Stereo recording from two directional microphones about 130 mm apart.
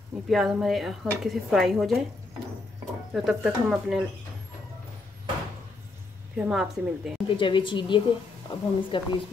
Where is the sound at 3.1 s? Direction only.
5° right (ahead or behind).